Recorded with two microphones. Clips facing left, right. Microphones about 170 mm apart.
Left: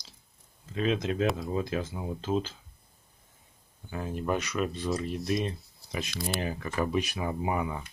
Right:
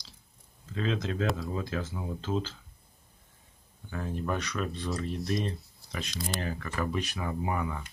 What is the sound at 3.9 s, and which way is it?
Speech, 15° left (ahead or behind).